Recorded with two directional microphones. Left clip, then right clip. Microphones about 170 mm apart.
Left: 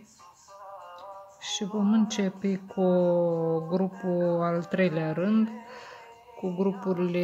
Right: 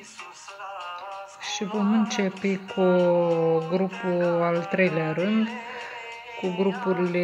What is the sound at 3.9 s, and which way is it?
Speech, 30° right (ahead or behind).